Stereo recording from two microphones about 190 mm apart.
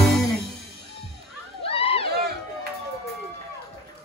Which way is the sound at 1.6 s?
30° left (ahead or behind).